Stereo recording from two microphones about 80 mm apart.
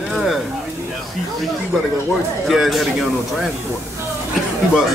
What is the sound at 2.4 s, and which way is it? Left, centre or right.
Speech, centre.